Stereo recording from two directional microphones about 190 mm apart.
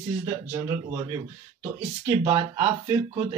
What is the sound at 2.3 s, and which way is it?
Speech, 15° right (ahead or behind).